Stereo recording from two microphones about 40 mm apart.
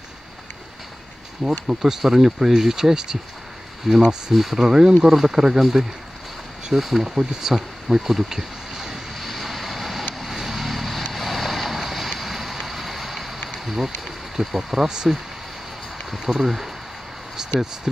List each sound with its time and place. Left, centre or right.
1.4 s speech: centre
4.3 s speech: centre
4.6 s speech: centre
7.1 s speech: centre
7.5 s speech: centre
8.7 s vehicle: centre
9.1 s vehicle: centre
13.7 s speech: centre
14.9 s speech: centre
16.3 s speech: centre
17.4 s a sound: centre